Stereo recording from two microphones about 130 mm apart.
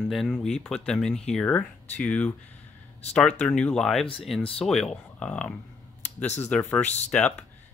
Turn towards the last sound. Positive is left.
turn(degrees=5)  # may be behind; listen again after turning